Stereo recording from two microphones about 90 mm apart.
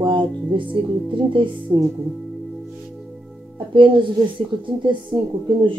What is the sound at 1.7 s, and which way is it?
Speech, 45° right (ahead or behind).